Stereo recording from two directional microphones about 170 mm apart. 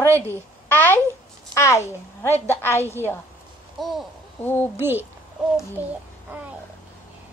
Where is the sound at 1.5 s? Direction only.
15° left (ahead or behind).